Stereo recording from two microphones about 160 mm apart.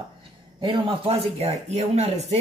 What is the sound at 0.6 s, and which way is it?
A man's voice, 30° right (ahead or behind).